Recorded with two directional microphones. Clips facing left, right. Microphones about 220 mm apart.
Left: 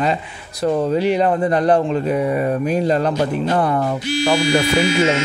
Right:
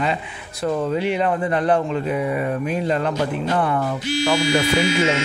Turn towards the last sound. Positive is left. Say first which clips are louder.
# left 3 dB
turn(degrees=40)  # may be behind; listen again after turning